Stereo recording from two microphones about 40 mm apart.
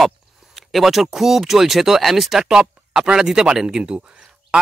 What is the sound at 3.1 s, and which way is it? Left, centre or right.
Speech, centre.